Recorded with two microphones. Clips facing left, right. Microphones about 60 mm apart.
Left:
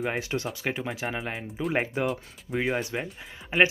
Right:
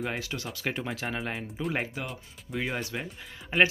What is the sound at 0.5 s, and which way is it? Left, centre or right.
Speech, centre.